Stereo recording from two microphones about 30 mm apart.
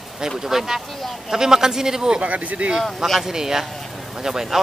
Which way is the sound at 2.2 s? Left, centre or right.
Right.